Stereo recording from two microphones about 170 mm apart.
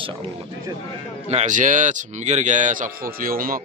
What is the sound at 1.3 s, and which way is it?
Speech, 45° right (ahead or behind).